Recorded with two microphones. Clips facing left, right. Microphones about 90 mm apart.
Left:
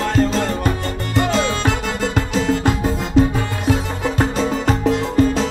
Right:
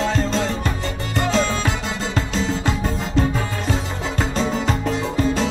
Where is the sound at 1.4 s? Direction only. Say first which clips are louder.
Left 2 dB; 55° left (ahead or behind).